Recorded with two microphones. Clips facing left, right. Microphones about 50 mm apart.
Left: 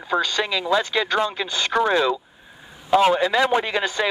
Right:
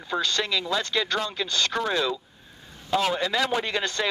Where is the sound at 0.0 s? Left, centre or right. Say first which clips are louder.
Left 4 dB; centre.